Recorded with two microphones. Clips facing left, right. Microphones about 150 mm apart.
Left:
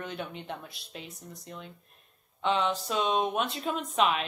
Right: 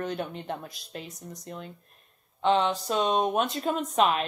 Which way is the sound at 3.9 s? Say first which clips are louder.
Right 2 dB; 40° right (ahead or behind).